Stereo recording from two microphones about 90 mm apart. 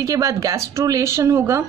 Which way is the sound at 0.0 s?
40° right (ahead or behind).